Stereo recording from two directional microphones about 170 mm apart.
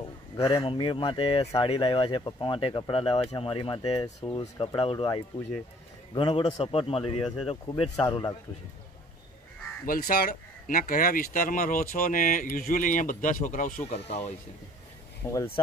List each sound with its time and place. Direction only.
0.4 s speech: 30° left (ahead or behind)
8.1 s speech: 25° left (ahead or behind)
9.8 s speech: 60° left (ahead or behind)
13.8 s speech: 40° left (ahead or behind)
15.2 s speech: 20° left (ahead or behind)